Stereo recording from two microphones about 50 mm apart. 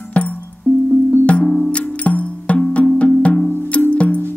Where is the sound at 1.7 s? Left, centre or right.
Left.